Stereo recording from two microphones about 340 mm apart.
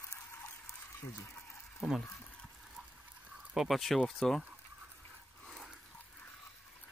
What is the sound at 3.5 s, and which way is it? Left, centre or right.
Speech, centre.